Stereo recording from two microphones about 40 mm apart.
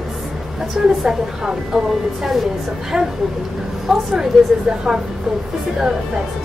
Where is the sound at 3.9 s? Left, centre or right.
Centre.